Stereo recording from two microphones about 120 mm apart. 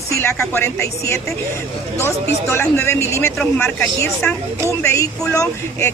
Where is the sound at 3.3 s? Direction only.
10° left (ahead or behind).